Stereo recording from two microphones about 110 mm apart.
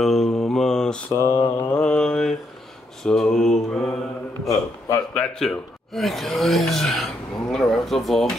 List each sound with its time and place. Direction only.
0.0 s mantra: centre (ahead or behind)
1.1 s mantra: 25° left (ahead or behind)
1.8 s mantra: 5° left (ahead or behind)
4.5 s a sound: 30° left (ahead or behind)
5.1 s speech: 5° left (ahead or behind)